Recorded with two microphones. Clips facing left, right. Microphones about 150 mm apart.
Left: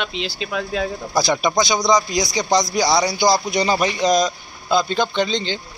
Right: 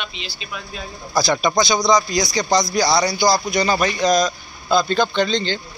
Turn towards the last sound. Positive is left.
turn(degrees=15)  # may be behind; listen again after turning